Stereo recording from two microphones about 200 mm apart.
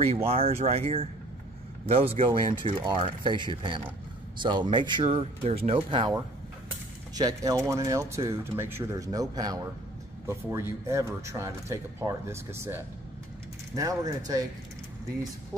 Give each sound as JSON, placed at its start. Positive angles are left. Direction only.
{"t": 0.0, "sound": "speech", "side_deg": -30}